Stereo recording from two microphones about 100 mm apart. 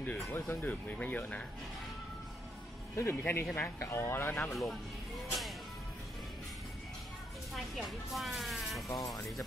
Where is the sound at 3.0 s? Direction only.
25° left (ahead or behind).